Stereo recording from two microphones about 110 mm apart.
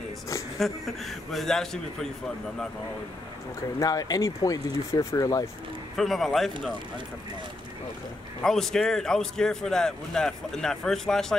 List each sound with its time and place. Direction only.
0.6 s a man's voice: centre (ahead or behind)
3.8 s speech: 35° left (ahead or behind)
5.9 s a man's voice: centre (ahead or behind)
8.4 s a man's voice: 5° left (ahead or behind)